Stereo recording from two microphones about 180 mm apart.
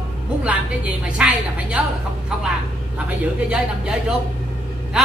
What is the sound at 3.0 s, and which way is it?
A woman's voice, 5° right (ahead or behind).